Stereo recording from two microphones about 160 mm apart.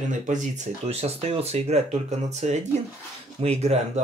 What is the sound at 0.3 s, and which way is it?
Speech, 50° right (ahead or behind).